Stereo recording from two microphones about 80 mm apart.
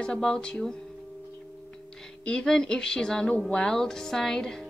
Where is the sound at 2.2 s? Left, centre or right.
Centre.